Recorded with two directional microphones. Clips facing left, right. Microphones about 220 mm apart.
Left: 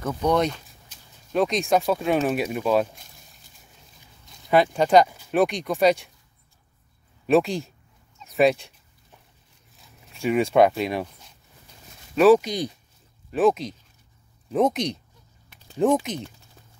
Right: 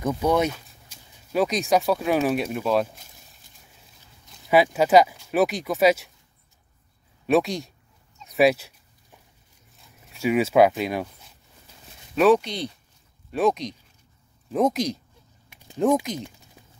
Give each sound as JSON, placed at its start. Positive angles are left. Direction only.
{"t": 0.0, "sound": "speech", "side_deg": -10}
{"t": 4.3, "sound": "speech", "side_deg": -5}
{"t": 7.2, "sound": "speech", "side_deg": 0}
{"t": 8.2, "sound": "dog", "side_deg": 0}
{"t": 10.1, "sound": "speech", "side_deg": -5}
{"t": 12.2, "sound": "speech", "side_deg": 5}